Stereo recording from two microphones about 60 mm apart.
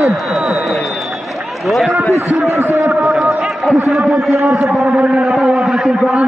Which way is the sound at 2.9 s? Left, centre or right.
Centre.